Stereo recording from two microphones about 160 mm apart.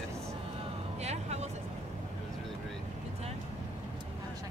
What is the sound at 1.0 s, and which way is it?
Music, 45° right (ahead or behind).